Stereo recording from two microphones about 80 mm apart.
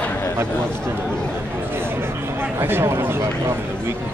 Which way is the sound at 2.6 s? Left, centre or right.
Right.